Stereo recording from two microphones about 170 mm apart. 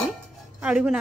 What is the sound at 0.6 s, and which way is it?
Speech, 5° right (ahead or behind).